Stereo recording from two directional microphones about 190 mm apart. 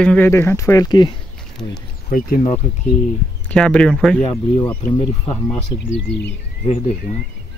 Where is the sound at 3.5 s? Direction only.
5° left (ahead or behind).